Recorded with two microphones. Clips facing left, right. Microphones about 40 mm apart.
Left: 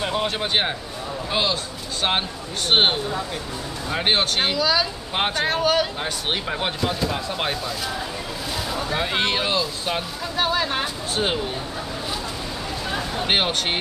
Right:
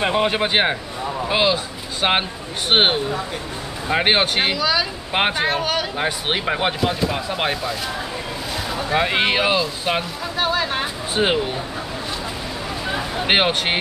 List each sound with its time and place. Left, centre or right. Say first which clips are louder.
0.0 s speech: right 5 dB; right; by 4.8 s centre
5.1 s speech: right 3 dB; centre
5.9 s speech: right 4 dB; centre
6.8 s speech: right 3 dB; centre
8.9 s speech: right 5 dB; centre
10.3 s speech: right 1 dB; centre
11.2 s speech: right 5 dB; right
12.8 s vehicle: right 3 dB; right